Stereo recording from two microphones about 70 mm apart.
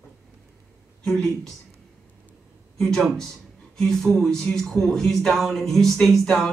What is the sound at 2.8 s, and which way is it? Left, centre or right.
Speech, centre.